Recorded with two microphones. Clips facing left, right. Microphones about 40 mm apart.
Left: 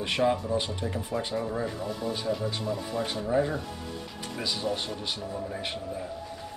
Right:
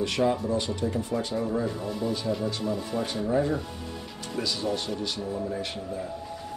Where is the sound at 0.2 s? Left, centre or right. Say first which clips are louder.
Even; centre.